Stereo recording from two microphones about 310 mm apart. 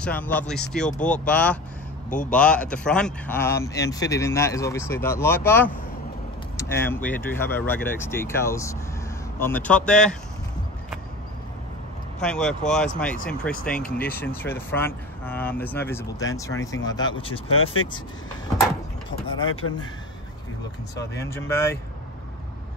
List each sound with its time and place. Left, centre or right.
0.0 s speech: centre
12.2 s speech: centre
17.5 s speech: left
19.4 s speech: left
21.0 s speech: left
21.3 s speech: centre